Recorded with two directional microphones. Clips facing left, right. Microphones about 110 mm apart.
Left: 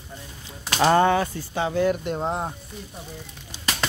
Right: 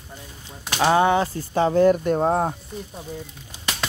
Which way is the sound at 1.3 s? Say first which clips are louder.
Right 5 dB; 40° right (ahead or behind).